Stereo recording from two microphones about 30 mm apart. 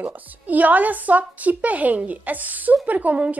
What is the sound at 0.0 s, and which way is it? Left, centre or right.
A woman's voice, right.